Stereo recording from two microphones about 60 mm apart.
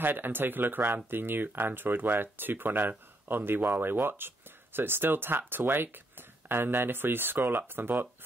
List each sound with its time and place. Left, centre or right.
0.0 s speech: right